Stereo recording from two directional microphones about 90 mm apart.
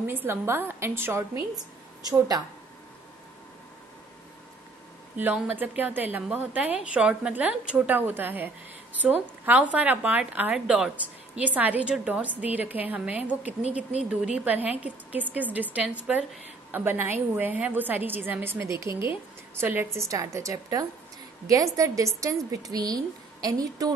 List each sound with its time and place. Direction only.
0.0 s a woman's voice: 25° right (ahead or behind)
2.0 s speech: 45° right (ahead or behind)
5.1 s a woman's voice: 20° right (ahead or behind); by 23.9 s 45° right (ahead or behind)